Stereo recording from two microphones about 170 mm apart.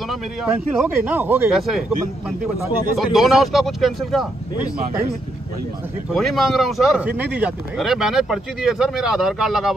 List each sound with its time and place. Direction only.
0.1 s speech: centre (ahead or behind)
3.0 s speech: centre (ahead or behind)
6.0 s speech: centre (ahead or behind)